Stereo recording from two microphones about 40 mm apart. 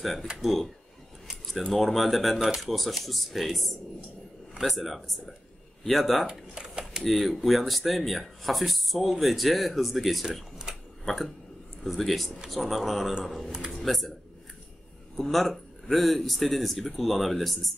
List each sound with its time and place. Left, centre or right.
0.0 s speech: centre
1.7 s speech: centre
2.4 s speech: centre
2.7 s speech: centre
6.5 s a sound: right
7.1 s speech: centre
15.1 s speech: centre